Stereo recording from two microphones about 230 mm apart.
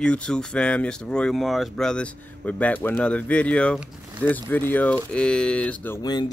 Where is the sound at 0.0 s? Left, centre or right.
Centre.